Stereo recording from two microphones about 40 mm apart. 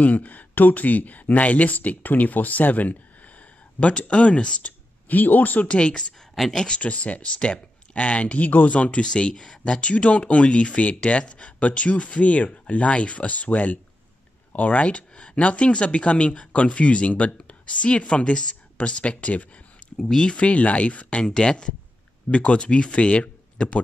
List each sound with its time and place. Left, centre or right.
0.0 s speech: left
4.1 s speech: left
5.0 s speech: left
5.7 s speech: left
6.8 s speech: left
20.0 s speech: centre
20.3 s speech: left
21.2 s speech: centre